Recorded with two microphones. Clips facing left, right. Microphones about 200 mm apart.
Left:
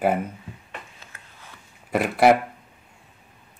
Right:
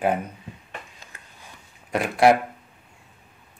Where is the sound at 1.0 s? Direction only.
15° right (ahead or behind).